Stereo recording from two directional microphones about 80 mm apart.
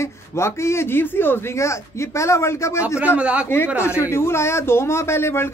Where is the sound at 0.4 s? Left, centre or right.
Left.